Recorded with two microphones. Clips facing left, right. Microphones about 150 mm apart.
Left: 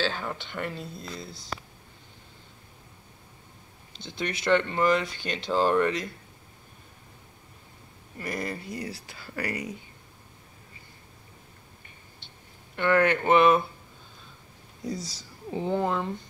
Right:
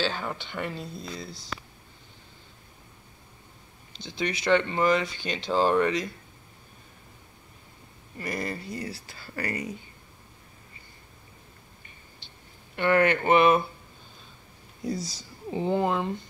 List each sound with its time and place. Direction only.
0.0 s speech: 5° right (ahead or behind)
4.0 s speech: 50° left (ahead or behind)
4.5 s speech: 10° right (ahead or behind)
8.2 s speech: 5° left (ahead or behind)
12.7 s speech: 5° right (ahead or behind)
14.8 s speech: 10° right (ahead or behind)